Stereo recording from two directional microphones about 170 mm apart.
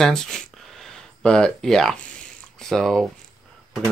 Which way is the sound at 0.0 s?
5° left (ahead or behind).